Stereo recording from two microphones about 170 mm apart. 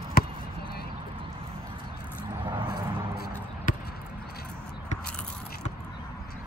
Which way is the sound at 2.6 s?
65° left (ahead or behind).